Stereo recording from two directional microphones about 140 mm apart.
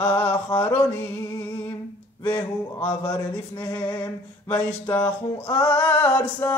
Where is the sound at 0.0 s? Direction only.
15° left (ahead or behind).